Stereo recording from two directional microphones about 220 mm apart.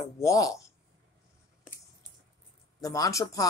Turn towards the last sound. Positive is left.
turn(degrees=15)  # may be behind; listen again after turning